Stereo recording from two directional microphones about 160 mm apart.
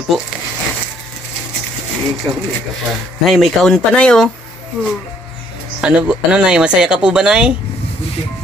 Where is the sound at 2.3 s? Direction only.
15° right (ahead or behind).